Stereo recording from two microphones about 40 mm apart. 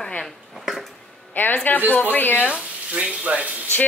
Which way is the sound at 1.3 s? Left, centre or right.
Left.